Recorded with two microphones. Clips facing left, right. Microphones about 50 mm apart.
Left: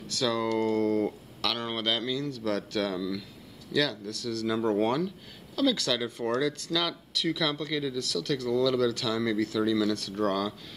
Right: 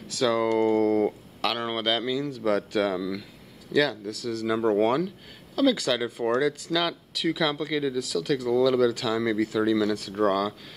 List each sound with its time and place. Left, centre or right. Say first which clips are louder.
0.1 s speech: right 5 dB; centre
0.7 s speech: right 4 dB; centre